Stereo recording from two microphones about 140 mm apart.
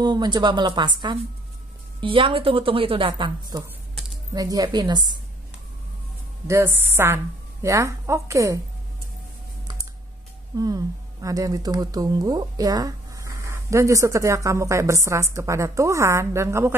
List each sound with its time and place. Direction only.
0.0 s a woman's voice: 30° right (ahead or behind)
6.4 s a woman's voice: 20° right (ahead or behind)
10.5 s speech: 25° right (ahead or behind)